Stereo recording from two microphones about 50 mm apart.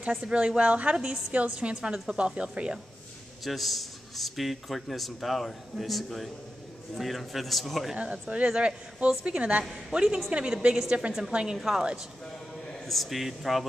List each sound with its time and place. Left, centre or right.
0.2 s a woman's voice: right
3.4 s a man's voice: centre
7.9 s a woman's voice: right
11.5 s a man's voice: centre
12.8 s a man's voice: centre